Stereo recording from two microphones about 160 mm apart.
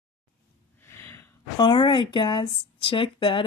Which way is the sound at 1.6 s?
30° left (ahead or behind).